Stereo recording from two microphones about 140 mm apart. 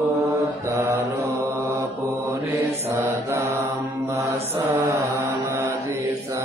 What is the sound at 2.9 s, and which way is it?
Mantra, 20° right (ahead or behind).